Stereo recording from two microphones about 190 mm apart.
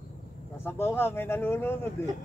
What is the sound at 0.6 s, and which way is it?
Speech, 10° left (ahead or behind).